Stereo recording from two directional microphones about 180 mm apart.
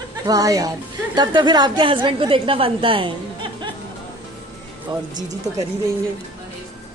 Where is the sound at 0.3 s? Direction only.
20° right (ahead or behind).